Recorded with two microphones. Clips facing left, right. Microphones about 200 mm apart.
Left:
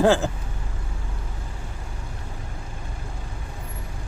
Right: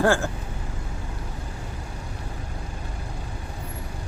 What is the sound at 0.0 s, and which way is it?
Speech, 20° left (ahead or behind).